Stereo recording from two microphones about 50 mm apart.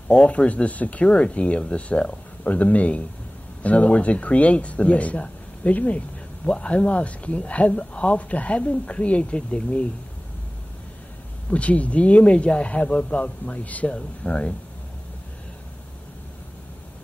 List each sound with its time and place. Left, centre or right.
0.4 s speech: left
9.5 s speech: centre
11.5 s speech: left
13.9 s speech: centre